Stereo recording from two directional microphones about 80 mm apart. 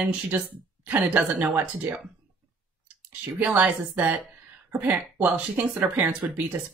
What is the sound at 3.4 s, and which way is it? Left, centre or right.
Speech, centre.